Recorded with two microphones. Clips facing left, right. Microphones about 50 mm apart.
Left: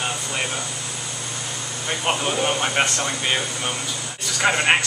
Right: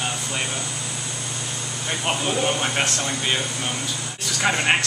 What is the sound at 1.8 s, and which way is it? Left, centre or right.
Speech, centre.